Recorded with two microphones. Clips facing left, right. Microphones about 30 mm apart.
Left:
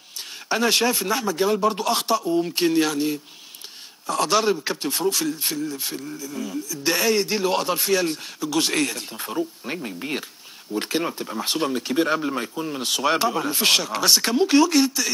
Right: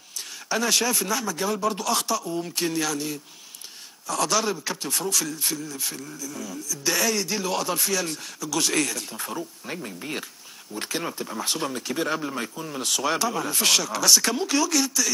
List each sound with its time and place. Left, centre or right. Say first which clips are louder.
0.5 s speech: left 3 dB; left; by 12.8 s centre
12.8 s speech: left 3 dB; left